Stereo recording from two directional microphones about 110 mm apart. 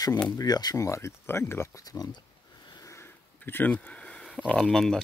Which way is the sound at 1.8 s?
35° left (ahead or behind).